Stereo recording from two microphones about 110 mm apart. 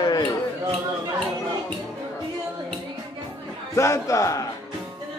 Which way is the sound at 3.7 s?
25° left (ahead or behind).